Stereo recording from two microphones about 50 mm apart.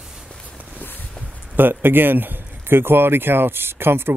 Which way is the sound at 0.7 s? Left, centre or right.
Left.